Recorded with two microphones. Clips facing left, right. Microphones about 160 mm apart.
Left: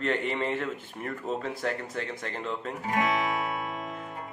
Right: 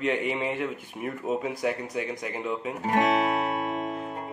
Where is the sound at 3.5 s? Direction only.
45° right (ahead or behind).